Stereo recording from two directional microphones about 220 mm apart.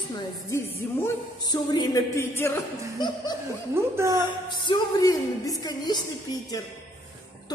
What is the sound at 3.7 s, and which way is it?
Speech, 10° right (ahead or behind).